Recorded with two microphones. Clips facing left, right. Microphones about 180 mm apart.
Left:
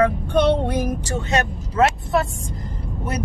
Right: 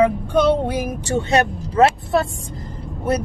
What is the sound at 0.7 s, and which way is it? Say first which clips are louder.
Speech: left 1 dB; 10° right (ahead or behind).